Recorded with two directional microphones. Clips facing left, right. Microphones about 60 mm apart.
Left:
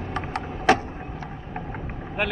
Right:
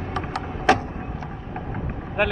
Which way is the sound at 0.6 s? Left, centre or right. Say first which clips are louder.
Right 1 dB; right.